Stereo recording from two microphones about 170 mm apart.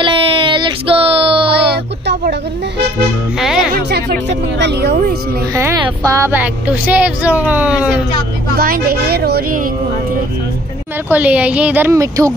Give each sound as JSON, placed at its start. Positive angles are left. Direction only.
{"t": 0.0, "sound": "a sound", "side_deg": -30}
{"t": 3.3, "sound": "music", "side_deg": -5}
{"t": 3.7, "sound": "music", "side_deg": -65}
{"t": 5.5, "sound": "speech", "side_deg": -15}
{"t": 8.5, "sound": "a woman's voice", "side_deg": -60}
{"t": 11.1, "sound": "speech", "side_deg": -10}